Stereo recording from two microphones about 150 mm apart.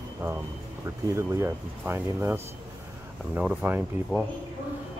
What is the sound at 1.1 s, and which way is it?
Speech, 20° right (ahead or behind).